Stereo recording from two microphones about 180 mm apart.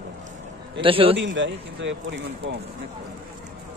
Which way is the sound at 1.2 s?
90° right.